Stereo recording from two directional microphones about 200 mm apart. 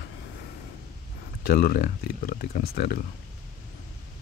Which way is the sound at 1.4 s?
50° left (ahead or behind).